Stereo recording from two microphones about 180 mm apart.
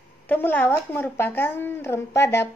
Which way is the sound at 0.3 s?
10° left (ahead or behind).